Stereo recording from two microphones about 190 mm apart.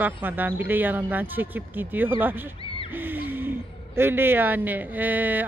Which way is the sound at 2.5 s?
30° left (ahead or behind).